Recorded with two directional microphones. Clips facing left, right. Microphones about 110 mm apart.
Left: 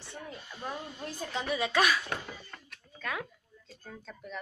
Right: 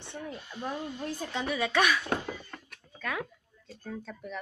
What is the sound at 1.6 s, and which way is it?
Female singing, 10° left (ahead or behind).